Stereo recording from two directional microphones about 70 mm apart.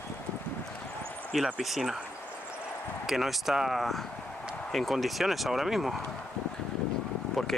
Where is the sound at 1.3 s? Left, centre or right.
Centre.